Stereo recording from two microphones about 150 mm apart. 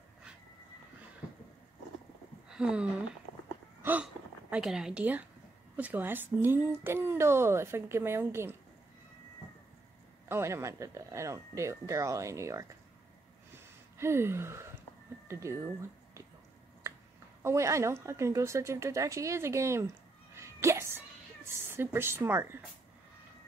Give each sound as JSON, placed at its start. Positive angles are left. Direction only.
{"t": 2.5, "sound": "a sound", "side_deg": -5}
{"t": 3.8, "sound": "speech", "side_deg": -10}
{"t": 10.2, "sound": "speech", "side_deg": -15}
{"t": 13.9, "sound": "speech", "side_deg": -15}
{"t": 17.4, "sound": "speech", "side_deg": -20}
{"t": 20.3, "sound": "a sound", "side_deg": -20}
{"t": 21.6, "sound": "speech", "side_deg": -15}